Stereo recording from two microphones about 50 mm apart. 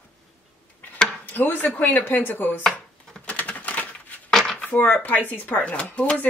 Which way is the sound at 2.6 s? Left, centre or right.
Centre.